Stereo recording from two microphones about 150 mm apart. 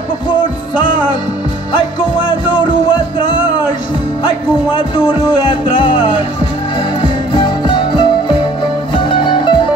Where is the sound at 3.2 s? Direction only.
35° left (ahead or behind).